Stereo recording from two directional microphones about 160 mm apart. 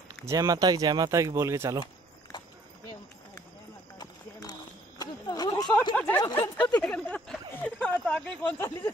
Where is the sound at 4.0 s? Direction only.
25° left (ahead or behind).